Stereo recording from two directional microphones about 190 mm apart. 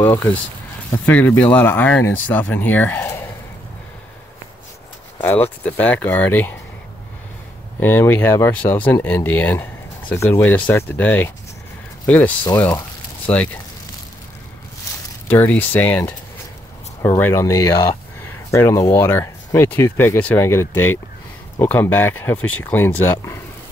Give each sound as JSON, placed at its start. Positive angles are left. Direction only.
{"t": 0.0, "sound": "speech", "side_deg": 10}
{"t": 5.2, "sound": "speech", "side_deg": 10}
{"t": 7.8, "sound": "speech", "side_deg": 10}
{"t": 12.4, "sound": "speech", "side_deg": 10}
{"t": 14.9, "sound": "a sound", "side_deg": 15}
{"t": 15.2, "sound": "speech", "side_deg": 10}
{"t": 17.2, "sound": "speech", "side_deg": 15}